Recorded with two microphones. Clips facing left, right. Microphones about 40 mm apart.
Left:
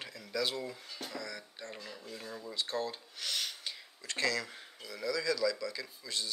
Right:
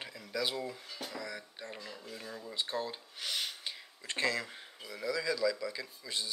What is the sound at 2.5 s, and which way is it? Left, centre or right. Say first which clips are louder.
Speech: even; centre.